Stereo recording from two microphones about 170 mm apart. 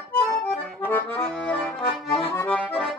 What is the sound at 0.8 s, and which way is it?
Accordion, 10° left (ahead or behind).